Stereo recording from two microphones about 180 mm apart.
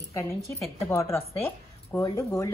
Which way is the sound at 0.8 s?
15° left (ahead or behind).